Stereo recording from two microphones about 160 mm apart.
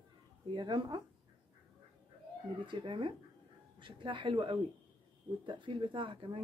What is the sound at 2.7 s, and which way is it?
A woman's voice, 30° right (ahead or behind).